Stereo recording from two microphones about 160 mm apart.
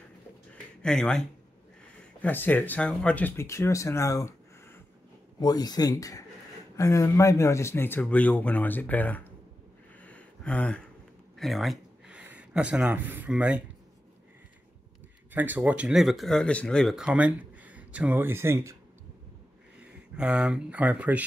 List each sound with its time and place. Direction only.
0.8 s speech: 5° left (ahead or behind)
2.2 s speech: 10° left (ahead or behind)
9.9 s a sound: 10° left (ahead or behind)
11.3 s speech: centre (ahead or behind)
15.3 s speech: 10° right (ahead or behind)
19.8 s speech: 5° right (ahead or behind)